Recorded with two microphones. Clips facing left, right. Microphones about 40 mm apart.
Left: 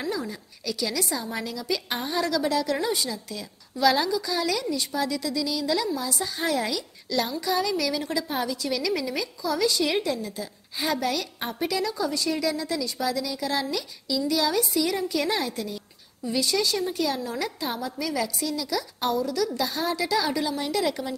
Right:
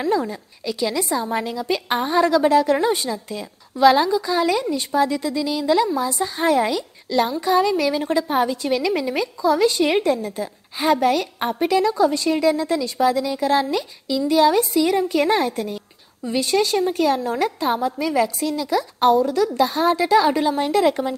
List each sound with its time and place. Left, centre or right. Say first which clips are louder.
0.0 s a woman's voice: right 9 dB; right
0.7 s a woman's voice: right 6 dB; right